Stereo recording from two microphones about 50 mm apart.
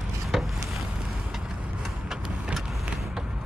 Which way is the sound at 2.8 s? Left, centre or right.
Centre.